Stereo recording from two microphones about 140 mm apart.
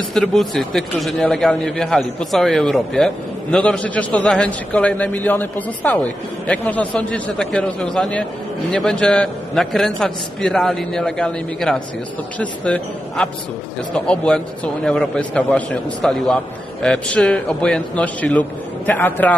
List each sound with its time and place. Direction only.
0.1 s a man's voice: 5° left (ahead or behind)